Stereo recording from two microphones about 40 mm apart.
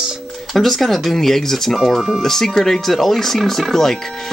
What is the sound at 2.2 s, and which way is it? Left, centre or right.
Speech, centre.